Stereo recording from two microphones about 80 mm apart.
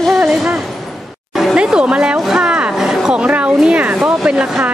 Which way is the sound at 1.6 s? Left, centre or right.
Centre.